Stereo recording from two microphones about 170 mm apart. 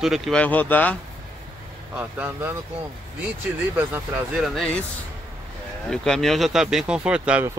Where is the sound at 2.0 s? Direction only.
10° right (ahead or behind).